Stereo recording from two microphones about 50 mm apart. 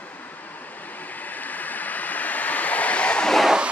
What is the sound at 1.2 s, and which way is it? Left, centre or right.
Vehicle, left.